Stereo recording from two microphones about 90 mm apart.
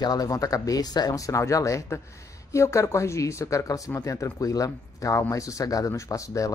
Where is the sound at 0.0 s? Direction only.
45° left (ahead or behind).